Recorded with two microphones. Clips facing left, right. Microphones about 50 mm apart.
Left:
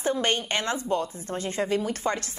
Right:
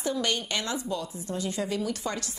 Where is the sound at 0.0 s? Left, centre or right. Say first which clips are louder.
Left 3 dB; left.